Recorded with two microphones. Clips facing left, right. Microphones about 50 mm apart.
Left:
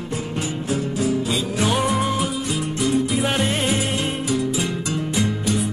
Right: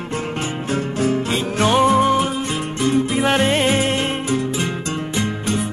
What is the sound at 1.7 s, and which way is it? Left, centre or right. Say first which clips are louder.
Music: right 10 dB; right.